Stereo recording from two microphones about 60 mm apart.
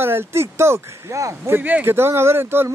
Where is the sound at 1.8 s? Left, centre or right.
Right.